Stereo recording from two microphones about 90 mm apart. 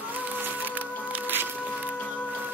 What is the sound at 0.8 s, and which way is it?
Music, 20° right (ahead or behind).